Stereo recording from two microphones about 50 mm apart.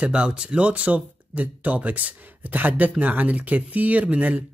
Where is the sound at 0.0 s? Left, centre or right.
Right.